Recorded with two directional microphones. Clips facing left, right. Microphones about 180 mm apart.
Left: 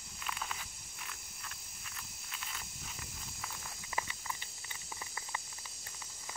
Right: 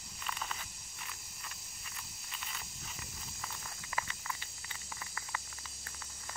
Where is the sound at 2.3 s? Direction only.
Centre (ahead or behind).